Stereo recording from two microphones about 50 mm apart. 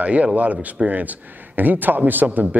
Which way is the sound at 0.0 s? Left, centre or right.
Right.